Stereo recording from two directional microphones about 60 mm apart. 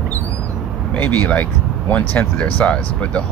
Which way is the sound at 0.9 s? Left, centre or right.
Left.